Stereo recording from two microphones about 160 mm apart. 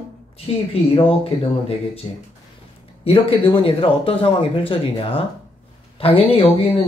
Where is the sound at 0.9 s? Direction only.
35° left (ahead or behind).